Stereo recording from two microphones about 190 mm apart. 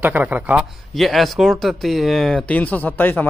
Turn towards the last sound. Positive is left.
turn(degrees=10)  # may be behind; listen again after turning